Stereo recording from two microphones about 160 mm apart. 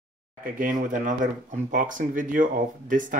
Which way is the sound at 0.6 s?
55° right (ahead or behind).